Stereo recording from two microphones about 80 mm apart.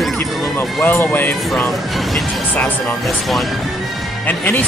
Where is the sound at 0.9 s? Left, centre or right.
Left.